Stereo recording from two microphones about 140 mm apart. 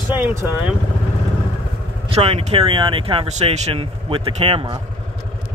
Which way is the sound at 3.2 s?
55° right (ahead or behind).